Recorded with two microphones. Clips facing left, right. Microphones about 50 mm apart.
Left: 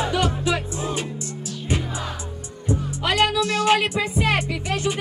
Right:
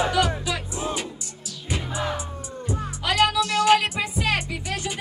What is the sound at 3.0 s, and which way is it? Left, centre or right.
Music, left.